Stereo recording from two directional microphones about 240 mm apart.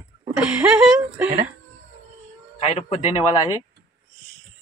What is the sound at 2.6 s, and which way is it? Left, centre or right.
Speech, left.